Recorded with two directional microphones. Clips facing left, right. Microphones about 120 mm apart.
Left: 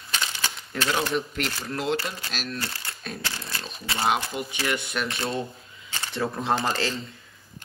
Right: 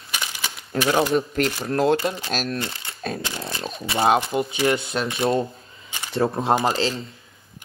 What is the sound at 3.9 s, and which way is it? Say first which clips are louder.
Speech: right 6 dB; 30° right (ahead or behind).